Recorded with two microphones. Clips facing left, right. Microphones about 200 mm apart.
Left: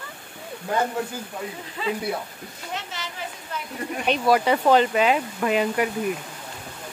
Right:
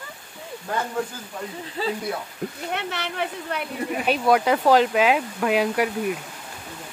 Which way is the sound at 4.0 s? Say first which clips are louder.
Even; centre (ahead or behind).